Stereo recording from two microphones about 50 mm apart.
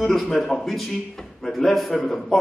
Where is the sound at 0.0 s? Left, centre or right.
Centre.